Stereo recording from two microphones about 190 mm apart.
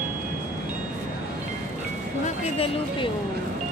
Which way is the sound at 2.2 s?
30° left (ahead or behind).